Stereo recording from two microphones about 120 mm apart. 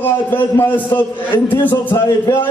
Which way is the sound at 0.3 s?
15° left (ahead or behind).